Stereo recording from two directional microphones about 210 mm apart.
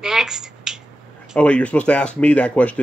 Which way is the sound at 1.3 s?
5° left (ahead or behind).